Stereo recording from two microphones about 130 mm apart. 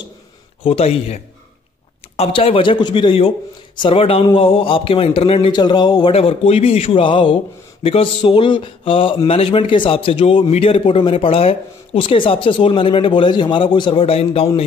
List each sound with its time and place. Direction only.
0.7 s speech: 50° left (ahead or behind)
6.1 s speech: 50° left (ahead or behind)